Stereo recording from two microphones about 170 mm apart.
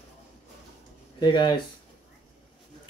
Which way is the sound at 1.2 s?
25° left (ahead or behind).